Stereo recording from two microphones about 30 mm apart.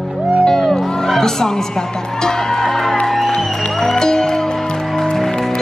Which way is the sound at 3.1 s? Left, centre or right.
Centre.